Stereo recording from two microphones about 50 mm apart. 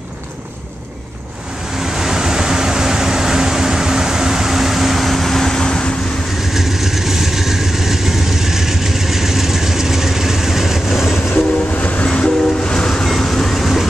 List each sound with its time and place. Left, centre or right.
1.8 s vehicle: centre
6.5 s vehicle: centre
11.8 s train: left
12.1 s train: centre
13.1 s vehicle: centre